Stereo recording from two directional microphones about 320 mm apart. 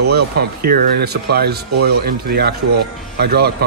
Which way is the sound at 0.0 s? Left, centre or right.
Right.